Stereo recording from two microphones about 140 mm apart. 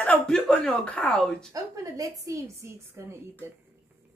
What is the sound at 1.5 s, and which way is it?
A woman's voice, 25° right (ahead or behind).